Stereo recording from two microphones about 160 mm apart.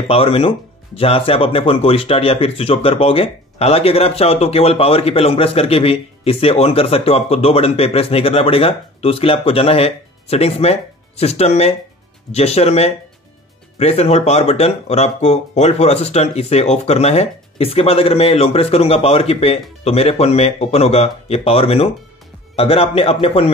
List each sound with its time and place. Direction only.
0.1 s speech: 35° left (ahead or behind)